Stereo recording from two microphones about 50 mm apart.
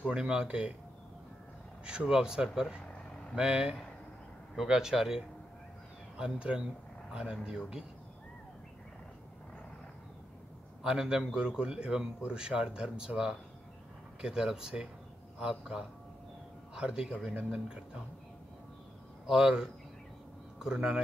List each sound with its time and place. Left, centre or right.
0.0 s speech: centre
1.9 s a man's voice: centre
6.1 s a man's voice: right
10.8 s a man's voice: centre
19.2 s a man's voice: centre